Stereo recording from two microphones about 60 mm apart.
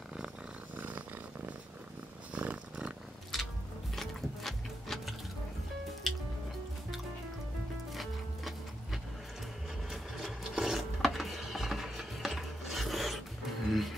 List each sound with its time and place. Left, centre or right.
0.7 s a sound: right
2.3 s purr: right
3.3 s music: centre
3.9 s sewing machine: centre
6.0 s drip: centre
7.9 s music: centre
9.8 s filing: centre
13.7 s music: centre